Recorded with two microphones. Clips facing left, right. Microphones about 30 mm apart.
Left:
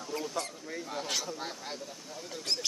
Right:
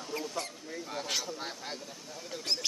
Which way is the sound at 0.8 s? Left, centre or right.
Centre.